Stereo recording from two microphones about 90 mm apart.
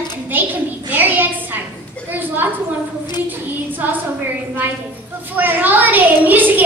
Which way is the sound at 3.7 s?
20° right (ahead or behind).